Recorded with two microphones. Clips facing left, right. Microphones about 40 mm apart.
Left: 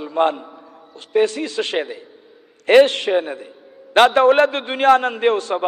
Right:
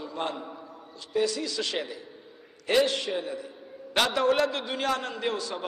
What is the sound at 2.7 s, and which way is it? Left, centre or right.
A man's voice, left.